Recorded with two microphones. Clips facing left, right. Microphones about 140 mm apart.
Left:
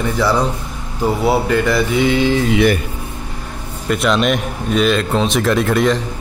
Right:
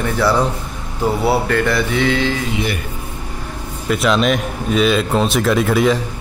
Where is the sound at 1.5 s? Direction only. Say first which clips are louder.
Left 2 dB; 10° left (ahead or behind).